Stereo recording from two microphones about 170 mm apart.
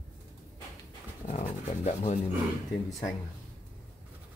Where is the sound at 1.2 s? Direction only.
40° left (ahead or behind).